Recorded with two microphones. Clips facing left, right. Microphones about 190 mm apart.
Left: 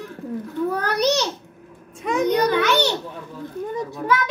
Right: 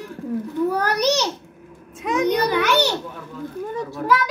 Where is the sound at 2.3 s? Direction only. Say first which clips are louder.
Left 2 dB; 10° right (ahead or behind).